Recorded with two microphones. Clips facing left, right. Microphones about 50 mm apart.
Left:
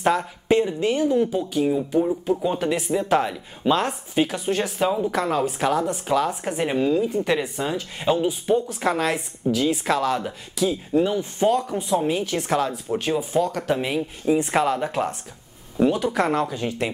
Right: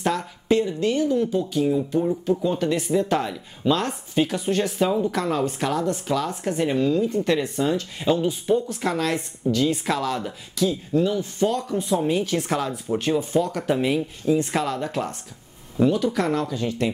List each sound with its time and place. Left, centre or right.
0.0 s speech: centre
1.3 s speech: centre
11.7 s speech: centre
13.7 s speech: centre
14.2 s speech: left